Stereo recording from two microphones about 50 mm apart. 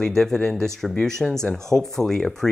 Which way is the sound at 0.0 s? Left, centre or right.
Centre.